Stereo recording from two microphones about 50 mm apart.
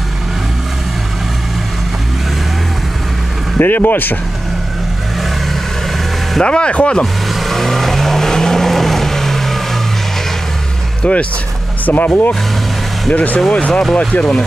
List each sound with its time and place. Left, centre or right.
3.5 s speech: left
6.4 s speech: left
7.3 s vehicle: centre
11.0 s speech: left